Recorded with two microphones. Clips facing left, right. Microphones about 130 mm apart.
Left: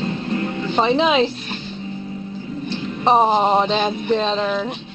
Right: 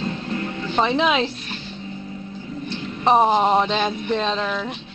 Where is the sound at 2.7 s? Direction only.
20° left (ahead or behind).